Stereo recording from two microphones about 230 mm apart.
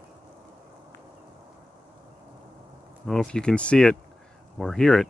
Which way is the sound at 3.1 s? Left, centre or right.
Centre.